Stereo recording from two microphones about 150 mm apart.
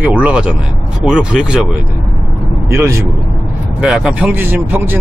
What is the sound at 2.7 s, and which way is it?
Speech, 20° right (ahead or behind).